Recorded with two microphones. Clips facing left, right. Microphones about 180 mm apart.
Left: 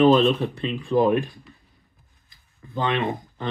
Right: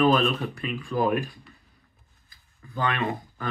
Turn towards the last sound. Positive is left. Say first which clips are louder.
# left 3 dB
turn(degrees=25)  # may be behind; listen again after turning